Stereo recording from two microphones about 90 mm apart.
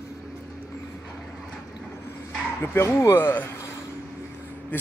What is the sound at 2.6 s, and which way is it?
Speech, 25° left (ahead or behind).